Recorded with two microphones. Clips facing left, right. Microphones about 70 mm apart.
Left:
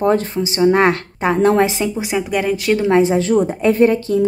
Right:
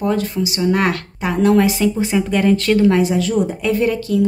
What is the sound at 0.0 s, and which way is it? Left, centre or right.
A woman's voice, left.